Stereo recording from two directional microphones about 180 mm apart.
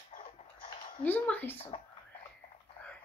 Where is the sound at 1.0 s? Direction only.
10° left (ahead or behind).